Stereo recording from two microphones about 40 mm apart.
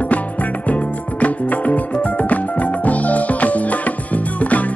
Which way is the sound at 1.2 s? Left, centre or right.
Left.